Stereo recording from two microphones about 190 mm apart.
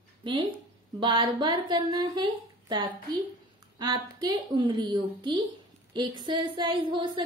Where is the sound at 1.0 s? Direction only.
25° right (ahead or behind).